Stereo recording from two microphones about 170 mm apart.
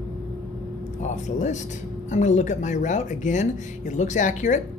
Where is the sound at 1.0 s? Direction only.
45° left (ahead or behind).